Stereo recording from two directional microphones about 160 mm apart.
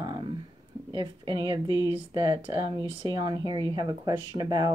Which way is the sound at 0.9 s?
30° right (ahead or behind).